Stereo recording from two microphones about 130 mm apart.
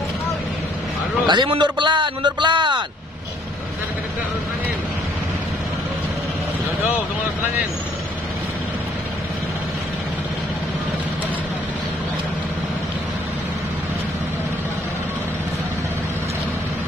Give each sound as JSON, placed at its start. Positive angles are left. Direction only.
{"t": 1.2, "sound": "a man's voice", "side_deg": -35}